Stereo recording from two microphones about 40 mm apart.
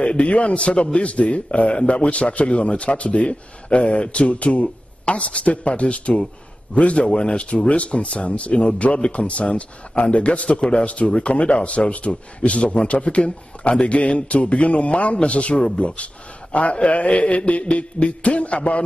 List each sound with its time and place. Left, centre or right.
0.0 s speech: left
16.5 s music: left